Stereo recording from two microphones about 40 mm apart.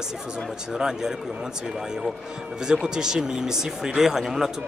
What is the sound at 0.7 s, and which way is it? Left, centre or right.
Speech, centre.